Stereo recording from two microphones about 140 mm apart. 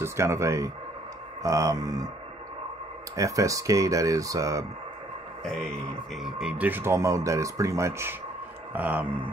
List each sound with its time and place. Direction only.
0.0 s speech: 20° right (ahead or behind)
3.2 s speech: 25° right (ahead or behind)
6.1 s speech: 5° right (ahead or behind)